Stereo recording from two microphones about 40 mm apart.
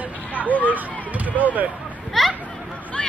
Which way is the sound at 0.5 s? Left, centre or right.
Left.